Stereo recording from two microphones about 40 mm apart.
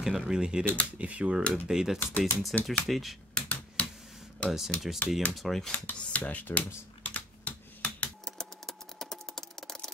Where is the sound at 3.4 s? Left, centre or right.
Left.